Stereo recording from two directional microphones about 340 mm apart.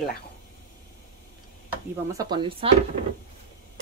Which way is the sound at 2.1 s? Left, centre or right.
Centre.